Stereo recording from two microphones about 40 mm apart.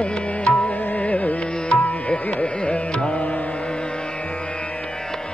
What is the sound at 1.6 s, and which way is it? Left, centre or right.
Music, left.